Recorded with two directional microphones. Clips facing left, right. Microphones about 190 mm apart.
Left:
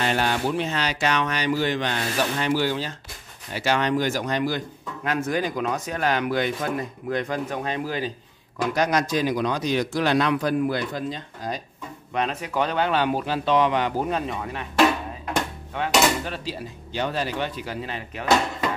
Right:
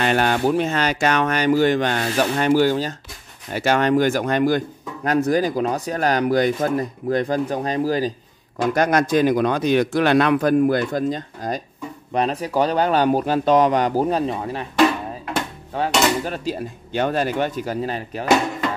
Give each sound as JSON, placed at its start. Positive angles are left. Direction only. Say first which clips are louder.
{"t": 0.0, "sound": "a man's voice", "louder": "right 5 dB", "side_deg": -55}
{"t": 8.5, "sound": "a man's voice", "louder": "right 4 dB", "side_deg": -50}
{"t": 15.7, "sound": "speech", "louder": "right 5 dB", "side_deg": -35}
{"t": 16.3, "sound": "a man's voice", "louder": "right 6 dB", "side_deg": -50}